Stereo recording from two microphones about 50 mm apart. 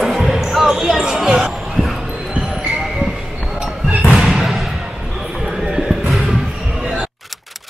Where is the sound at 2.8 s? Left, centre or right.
Centre.